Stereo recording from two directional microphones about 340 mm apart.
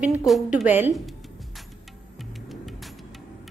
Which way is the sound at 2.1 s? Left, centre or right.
Centre.